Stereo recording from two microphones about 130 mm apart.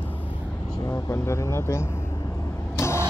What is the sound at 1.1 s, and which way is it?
Speech, 20° left (ahead or behind).